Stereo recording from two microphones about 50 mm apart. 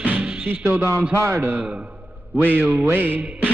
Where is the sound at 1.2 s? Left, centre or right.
Right.